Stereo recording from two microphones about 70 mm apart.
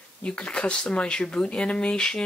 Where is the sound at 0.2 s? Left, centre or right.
Centre.